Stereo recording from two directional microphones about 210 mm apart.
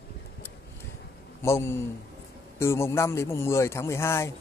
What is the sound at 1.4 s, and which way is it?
A man's voice, 10° left (ahead or behind).